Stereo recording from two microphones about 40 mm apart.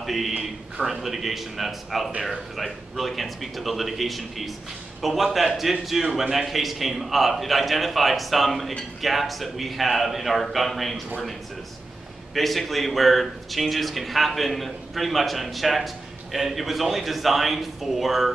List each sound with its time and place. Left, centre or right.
0.0 s a sound: centre
0.4 s speech: centre
12.4 s speech: centre